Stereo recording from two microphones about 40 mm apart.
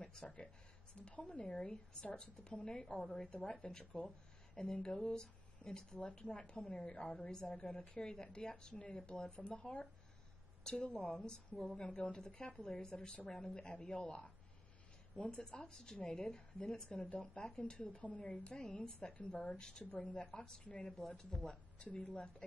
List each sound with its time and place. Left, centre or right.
0.0 s a sound: left
1.0 s a woman's voice: left
1.3 s a woman's voice: left
16.9 s a woman's voice: left
17.7 s a woman's voice: left
21.2 s a woman's voice: centre